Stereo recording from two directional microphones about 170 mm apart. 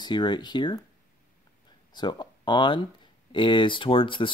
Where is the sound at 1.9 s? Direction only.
25° left (ahead or behind).